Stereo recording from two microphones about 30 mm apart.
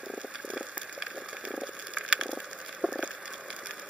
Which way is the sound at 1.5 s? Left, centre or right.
Right.